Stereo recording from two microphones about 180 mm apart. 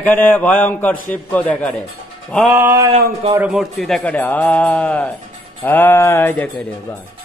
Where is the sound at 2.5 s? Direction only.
10° right (ahead or behind).